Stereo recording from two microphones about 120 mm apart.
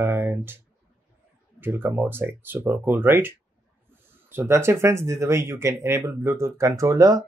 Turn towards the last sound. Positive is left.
turn(degrees=-30)  # may be behind; listen again after turning